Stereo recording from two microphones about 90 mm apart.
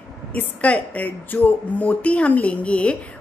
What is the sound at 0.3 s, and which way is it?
A woman's voice, 15° left (ahead or behind).